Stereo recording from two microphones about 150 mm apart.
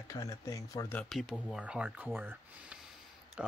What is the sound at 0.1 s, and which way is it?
Speech, 25° left (ahead or behind).